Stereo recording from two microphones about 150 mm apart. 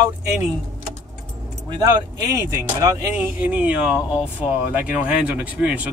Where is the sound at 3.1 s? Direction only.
10° right (ahead or behind).